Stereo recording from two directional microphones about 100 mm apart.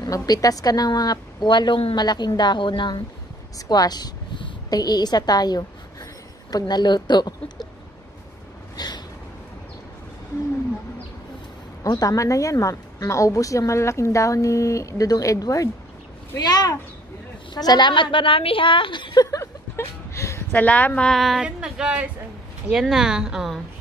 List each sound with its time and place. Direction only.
0.0 s a woman's voice: 40° left (ahead or behind)
3.5 s a woman's voice: 40° left (ahead or behind)
8.7 s a sound: 45° left (ahead or behind)
11.8 s a woman's voice: 35° left (ahead or behind); by 19.2 s 50° left (ahead or behind)
19.3 s chuckle: 30° left (ahead or behind)
20.5 s a woman's voice: 15° left (ahead or behind)
21.1 s a woman's voice: centre (ahead or behind)